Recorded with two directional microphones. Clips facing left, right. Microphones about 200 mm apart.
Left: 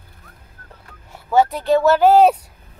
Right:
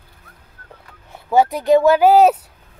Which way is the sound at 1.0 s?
15° right (ahead or behind).